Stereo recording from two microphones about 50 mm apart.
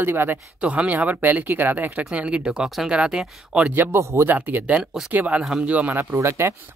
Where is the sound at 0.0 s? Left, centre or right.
Right.